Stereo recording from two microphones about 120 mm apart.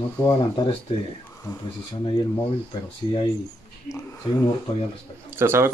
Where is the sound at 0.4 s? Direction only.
45° left (ahead or behind).